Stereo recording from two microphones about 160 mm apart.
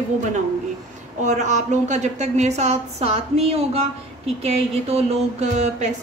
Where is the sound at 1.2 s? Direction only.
50° right (ahead or behind).